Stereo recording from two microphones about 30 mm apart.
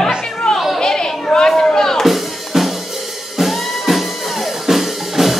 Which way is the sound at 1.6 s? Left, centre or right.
Left.